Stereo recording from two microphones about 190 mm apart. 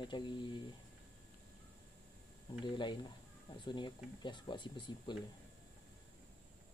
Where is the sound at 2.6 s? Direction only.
25° left (ahead or behind).